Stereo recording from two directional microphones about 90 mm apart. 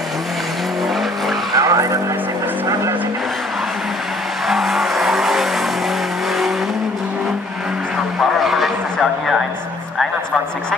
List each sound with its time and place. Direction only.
1.6 s vehicle: 40° right (ahead or behind)
4.5 s vehicle: centre (ahead or behind)
8.2 s a sound: centre (ahead or behind)